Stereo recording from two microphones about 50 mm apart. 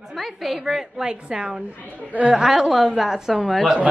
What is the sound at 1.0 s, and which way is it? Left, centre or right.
A woman's voice, centre.